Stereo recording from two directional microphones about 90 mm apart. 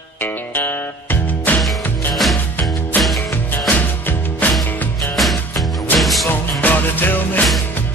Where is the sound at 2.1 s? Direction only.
Centre (ahead or behind).